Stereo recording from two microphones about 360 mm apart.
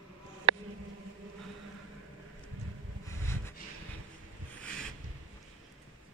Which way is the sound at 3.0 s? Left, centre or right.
Centre.